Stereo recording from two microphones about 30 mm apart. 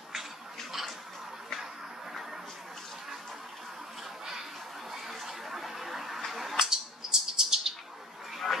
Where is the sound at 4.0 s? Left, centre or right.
Centre.